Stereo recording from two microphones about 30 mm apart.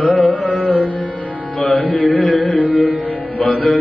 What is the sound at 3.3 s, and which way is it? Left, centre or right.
Music, left.